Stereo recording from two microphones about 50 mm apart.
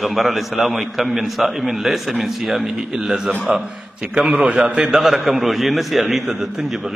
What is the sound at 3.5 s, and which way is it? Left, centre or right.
Speech, right.